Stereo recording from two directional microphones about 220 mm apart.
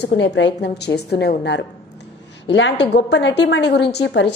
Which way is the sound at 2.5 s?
55° left (ahead or behind).